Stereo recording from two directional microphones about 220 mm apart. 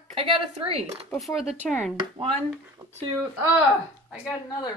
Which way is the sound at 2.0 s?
25° right (ahead or behind).